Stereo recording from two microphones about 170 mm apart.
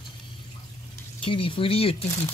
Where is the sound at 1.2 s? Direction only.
30° left (ahead or behind).